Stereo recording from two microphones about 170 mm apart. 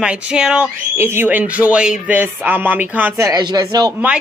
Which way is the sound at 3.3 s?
25° right (ahead or behind).